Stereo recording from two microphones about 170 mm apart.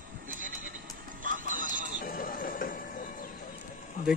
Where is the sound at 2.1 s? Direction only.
55° left (ahead or behind).